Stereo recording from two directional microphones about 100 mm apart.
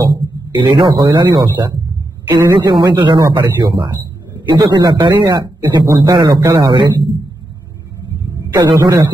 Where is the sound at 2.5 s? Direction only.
50° right (ahead or behind).